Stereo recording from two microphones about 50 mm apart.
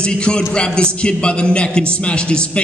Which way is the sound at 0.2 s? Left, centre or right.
Centre.